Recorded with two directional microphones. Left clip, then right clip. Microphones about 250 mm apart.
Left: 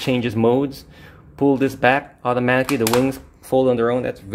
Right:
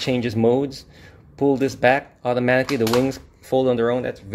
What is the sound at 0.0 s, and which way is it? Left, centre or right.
Speech, centre.